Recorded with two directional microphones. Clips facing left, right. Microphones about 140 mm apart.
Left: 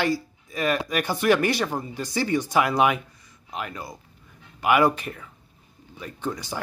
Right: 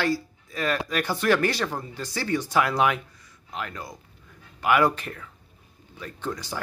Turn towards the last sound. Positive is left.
turn(degrees=10)  # may be behind; listen again after turning